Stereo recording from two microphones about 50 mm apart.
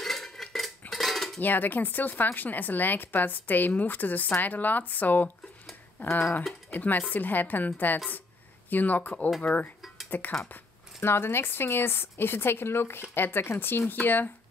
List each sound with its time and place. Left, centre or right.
0.0 s cutlery: centre
1.4 s speech: left
9.4 s dishes: left
10.0 s speech: left
11.0 s speech: left